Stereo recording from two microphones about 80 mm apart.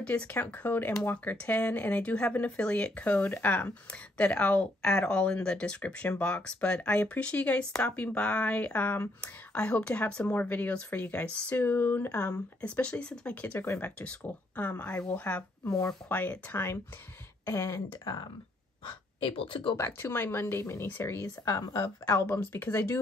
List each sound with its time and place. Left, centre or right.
0.0 s speech: centre
13.6 s speech: left
13.8 s speech: centre
17.5 s speech: left
18.0 s speech: left
19.2 s speech: left
19.8 s speech: left
22.2 s speech: left